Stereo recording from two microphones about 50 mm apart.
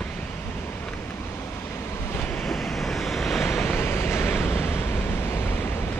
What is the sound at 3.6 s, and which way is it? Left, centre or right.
Vehicle, left.